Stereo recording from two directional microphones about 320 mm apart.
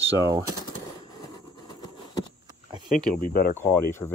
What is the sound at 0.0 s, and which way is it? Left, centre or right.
Speech, centre.